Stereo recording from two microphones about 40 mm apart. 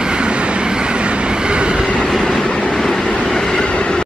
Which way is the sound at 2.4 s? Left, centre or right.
Left.